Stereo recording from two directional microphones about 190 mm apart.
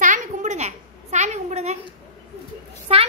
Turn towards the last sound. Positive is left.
turn(degrees=-30)  # may be behind; listen again after turning